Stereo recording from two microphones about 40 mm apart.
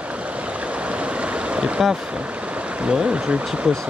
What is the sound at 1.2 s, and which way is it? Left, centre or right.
Stream, right.